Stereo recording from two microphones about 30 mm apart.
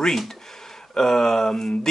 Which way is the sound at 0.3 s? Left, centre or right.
Centre.